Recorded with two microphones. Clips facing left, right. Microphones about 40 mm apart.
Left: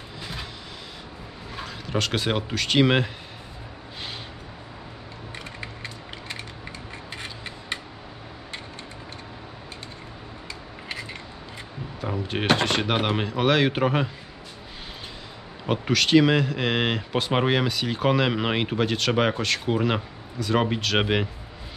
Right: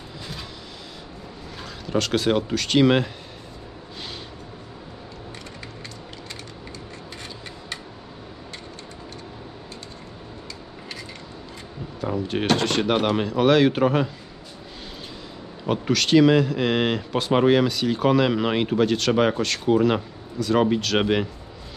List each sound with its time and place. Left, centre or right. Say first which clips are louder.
1.6 s speech: right 2 dB; centre
7.2 s a sound: left 1 dB; left
12.0 s speech: right 3 dB; centre
15.6 s speech: right 1 dB; centre